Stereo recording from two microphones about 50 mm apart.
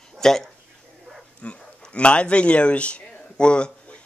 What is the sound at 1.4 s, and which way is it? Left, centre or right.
Speech, left.